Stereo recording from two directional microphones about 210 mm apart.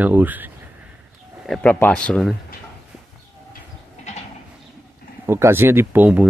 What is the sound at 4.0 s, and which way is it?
Sheep, 30° left (ahead or behind).